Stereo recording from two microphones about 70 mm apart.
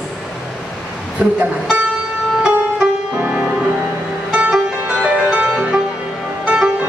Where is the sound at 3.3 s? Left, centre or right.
Centre.